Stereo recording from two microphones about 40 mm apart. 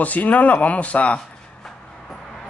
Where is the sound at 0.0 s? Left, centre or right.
Left.